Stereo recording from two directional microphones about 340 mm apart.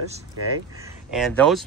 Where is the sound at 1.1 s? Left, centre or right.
Centre.